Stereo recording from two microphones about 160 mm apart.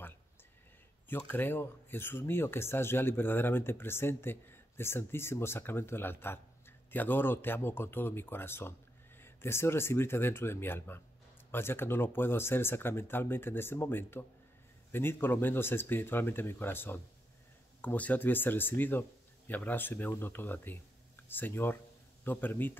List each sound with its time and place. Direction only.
1.0 s speech: 10° left (ahead or behind)